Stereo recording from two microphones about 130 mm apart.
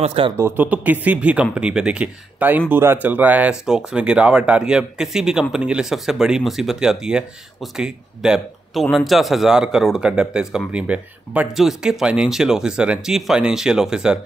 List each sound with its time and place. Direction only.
0.0 s speech: 45° right (ahead or behind)
0.4 s speech: 15° right (ahead or behind)